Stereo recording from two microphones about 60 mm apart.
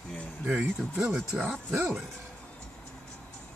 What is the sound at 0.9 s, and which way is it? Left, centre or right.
Speech, centre.